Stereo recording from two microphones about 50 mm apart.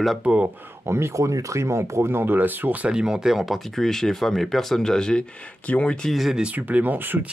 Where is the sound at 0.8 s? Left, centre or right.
Right.